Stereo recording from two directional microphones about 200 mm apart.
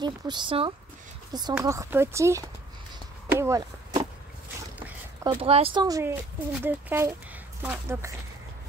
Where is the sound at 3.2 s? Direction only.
15° right (ahead or behind).